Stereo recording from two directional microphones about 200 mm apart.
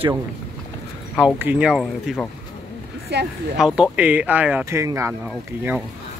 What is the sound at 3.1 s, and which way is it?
Speech, 60° right (ahead or behind).